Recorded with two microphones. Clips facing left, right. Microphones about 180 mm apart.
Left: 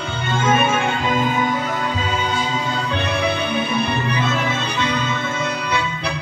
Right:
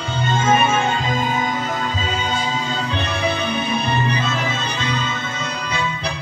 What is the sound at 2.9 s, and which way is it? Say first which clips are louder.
Music: left 2 dB; 60° left (ahead or behind).